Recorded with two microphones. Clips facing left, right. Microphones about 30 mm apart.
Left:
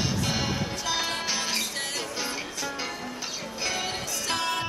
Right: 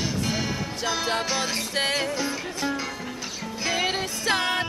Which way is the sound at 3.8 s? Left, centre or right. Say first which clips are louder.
Right 5 dB; right.